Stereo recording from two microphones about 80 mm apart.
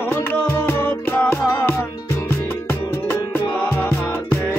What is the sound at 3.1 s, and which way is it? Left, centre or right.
Music, left.